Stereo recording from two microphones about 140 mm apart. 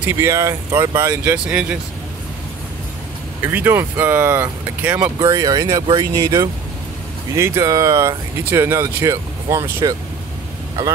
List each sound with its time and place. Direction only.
0.0 s speech: 20° right (ahead or behind)
3.4 s speech: 15° right (ahead or behind)
5.2 s speech: 25° right (ahead or behind)